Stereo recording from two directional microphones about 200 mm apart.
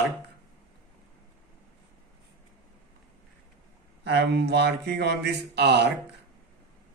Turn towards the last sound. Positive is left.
turn(degrees=-55)  # may be behind; listen again after turning